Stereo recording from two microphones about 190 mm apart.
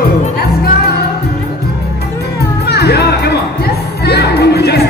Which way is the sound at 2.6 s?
60° left (ahead or behind).